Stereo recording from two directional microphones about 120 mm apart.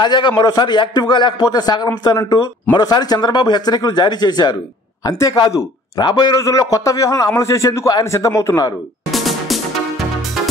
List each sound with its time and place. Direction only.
0.0 s a man's voice: 40° left (ahead or behind)
9.1 s music: centre (ahead or behind)